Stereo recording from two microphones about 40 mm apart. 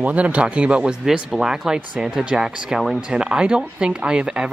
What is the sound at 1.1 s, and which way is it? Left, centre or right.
Speech, centre.